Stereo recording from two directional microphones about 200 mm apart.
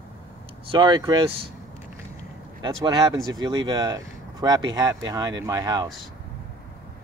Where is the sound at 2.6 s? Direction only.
20° right (ahead or behind).